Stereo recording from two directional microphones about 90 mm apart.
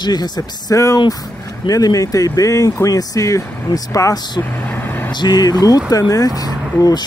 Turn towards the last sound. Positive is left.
turn(degrees=45)  # may be behind; listen again after turning